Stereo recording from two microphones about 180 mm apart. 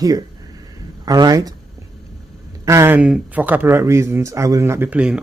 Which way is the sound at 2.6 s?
15° right (ahead or behind).